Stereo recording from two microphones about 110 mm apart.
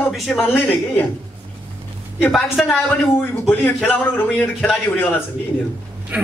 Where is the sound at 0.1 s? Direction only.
Centre (ahead or behind).